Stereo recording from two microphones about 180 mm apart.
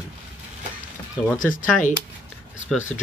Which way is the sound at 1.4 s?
50° left (ahead or behind).